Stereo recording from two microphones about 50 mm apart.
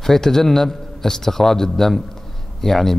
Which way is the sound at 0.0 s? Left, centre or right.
Centre.